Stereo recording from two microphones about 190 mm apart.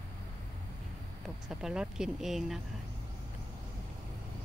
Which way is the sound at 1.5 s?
5° right (ahead or behind).